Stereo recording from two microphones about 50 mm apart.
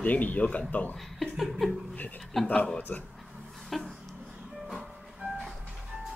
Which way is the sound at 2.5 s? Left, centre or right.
Centre.